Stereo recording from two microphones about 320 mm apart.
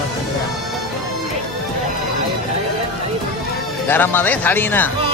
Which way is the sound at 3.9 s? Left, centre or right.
Centre.